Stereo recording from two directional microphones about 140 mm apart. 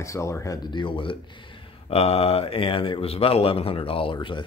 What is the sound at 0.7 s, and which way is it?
A man's voice, 35° left (ahead or behind).